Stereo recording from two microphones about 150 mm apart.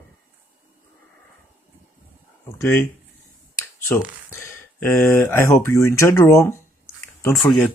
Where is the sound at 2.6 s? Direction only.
15° left (ahead or behind).